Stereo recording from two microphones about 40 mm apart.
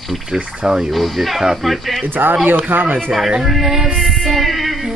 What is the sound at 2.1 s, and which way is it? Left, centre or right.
Speech, right.